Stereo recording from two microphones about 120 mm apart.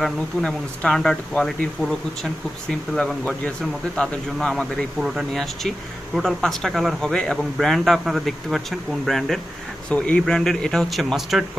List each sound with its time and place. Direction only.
0.0 s a man's voice: 5° left (ahead or behind)